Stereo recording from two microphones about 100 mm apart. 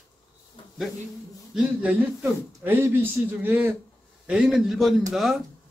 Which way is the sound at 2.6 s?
20° right (ahead or behind).